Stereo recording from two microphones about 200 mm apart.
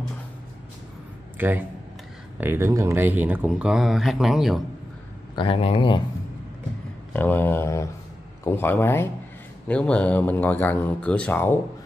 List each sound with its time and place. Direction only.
1.4 s speech: 10° right (ahead or behind)
5.3 s speech: 25° left (ahead or behind)
7.2 s speech: 10° left (ahead or behind)